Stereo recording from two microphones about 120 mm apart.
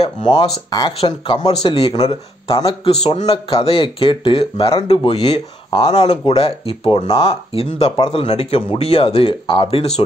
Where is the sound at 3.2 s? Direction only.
50° left (ahead or behind).